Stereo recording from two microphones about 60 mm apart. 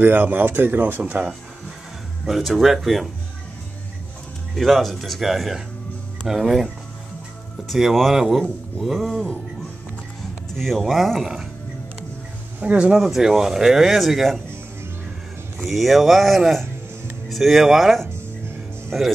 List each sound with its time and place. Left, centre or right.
0.0 s speech: right
2.2 s speech: centre
4.6 s speech: centre
10.5 s speech: centre
12.5 s speech: right
12.9 s speech: centre
15.6 s speech: centre